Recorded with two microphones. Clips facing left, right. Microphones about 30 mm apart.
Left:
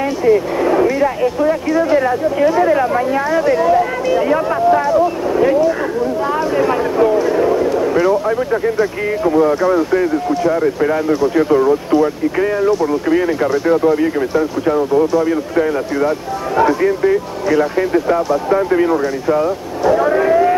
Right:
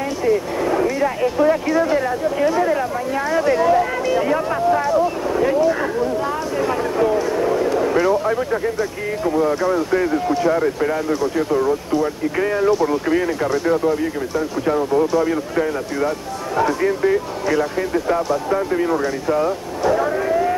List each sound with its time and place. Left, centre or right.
0.2 s speech: centre
1.9 s speech: centre
3.3 s speech: centre
6.5 s speech: centre
12.4 s speech: centre
14.7 s speech: centre
20.1 s a sound: left